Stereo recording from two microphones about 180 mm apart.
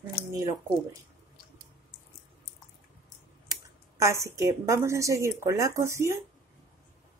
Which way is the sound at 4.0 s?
15° right (ahead or behind).